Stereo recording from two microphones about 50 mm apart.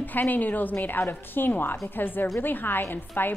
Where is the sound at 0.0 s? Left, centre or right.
Left.